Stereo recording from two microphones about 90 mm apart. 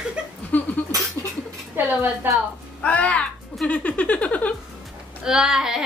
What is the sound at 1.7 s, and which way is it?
Speech, 20° right (ahead or behind).